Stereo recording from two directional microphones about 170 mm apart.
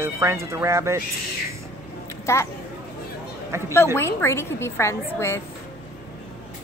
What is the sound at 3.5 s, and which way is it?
Speech, 15° right (ahead or behind).